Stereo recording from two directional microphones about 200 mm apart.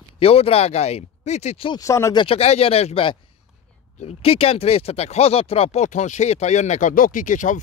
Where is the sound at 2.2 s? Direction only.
30° left (ahead or behind).